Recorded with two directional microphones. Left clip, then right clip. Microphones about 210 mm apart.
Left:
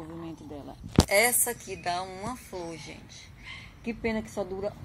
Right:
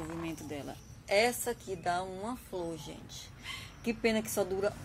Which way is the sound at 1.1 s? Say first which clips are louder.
Left 2 dB; centre (ahead or behind).